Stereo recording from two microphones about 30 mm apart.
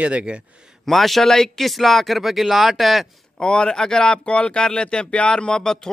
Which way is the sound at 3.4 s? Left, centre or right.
Left.